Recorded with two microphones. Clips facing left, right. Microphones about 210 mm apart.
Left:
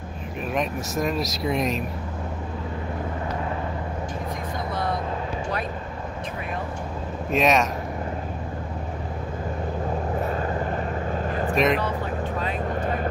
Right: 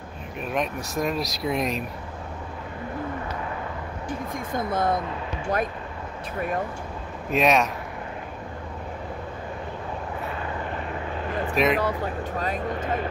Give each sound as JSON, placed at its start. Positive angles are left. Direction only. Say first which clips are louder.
{"t": 0.5, "sound": "speech", "louder": "left 1 dB", "side_deg": 0}
{"t": 4.6, "sound": "speech", "louder": "right 5 dB", "side_deg": -50}
{"t": 7.2, "sound": "speech", "louder": "even", "side_deg": 0}
{"t": 10.2, "sound": "vehicle", "louder": "left 5 dB", "side_deg": 40}
{"t": 11.5, "sound": "speech", "louder": "left 1 dB", "side_deg": 0}
{"t": 12.8, "sound": "vehicle", "louder": "left 2 dB", "side_deg": 40}